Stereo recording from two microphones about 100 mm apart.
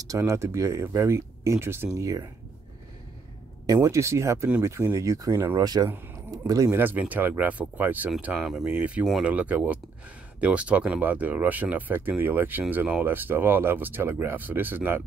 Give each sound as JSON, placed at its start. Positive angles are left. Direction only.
{"t": 0.0, "sound": "speech", "side_deg": -30}
{"t": 3.6, "sound": "speech", "side_deg": -30}
{"t": 5.6, "sound": "speech", "side_deg": -40}
{"t": 6.8, "sound": "speech", "side_deg": -15}